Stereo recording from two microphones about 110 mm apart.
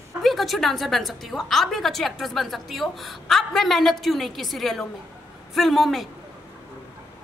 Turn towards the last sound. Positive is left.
turn(degrees=0)  # may be behind; listen again after turning